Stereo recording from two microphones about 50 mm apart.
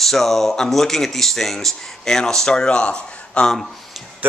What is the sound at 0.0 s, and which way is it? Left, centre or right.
Speech, centre.